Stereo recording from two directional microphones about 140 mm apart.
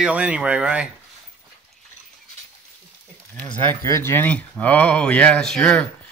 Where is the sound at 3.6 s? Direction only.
20° left (ahead or behind).